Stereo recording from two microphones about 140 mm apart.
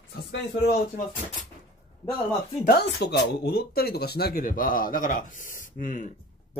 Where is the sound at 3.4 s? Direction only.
90° left; by 6.1 s 70° left (ahead or behind).